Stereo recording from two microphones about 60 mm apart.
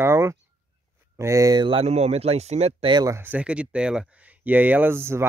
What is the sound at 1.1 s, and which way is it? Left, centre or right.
Speech, right.